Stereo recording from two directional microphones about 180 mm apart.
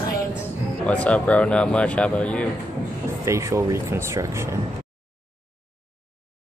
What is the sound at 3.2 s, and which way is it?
Speech, 15° right (ahead or behind).